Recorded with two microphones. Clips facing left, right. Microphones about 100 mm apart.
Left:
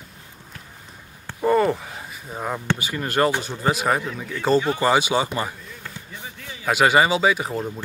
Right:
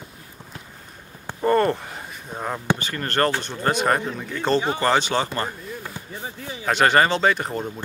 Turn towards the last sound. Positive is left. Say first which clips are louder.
# even
turn(degrees=5)  # may be behind; listen again after turning